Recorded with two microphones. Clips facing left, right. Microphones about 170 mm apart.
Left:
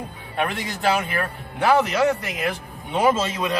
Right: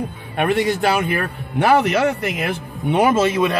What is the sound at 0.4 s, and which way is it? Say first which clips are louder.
A man's voice: right 8 dB; 65° right (ahead or behind).